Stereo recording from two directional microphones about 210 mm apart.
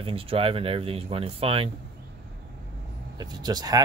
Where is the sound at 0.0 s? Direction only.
25° right (ahead or behind).